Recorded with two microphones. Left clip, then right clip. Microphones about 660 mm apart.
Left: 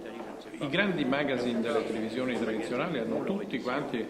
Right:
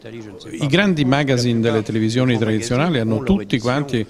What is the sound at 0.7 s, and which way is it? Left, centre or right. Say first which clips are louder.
Speech: right 11 dB; right.